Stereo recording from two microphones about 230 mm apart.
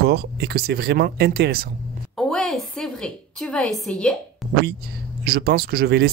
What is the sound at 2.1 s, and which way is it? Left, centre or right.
A woman's voice, centre.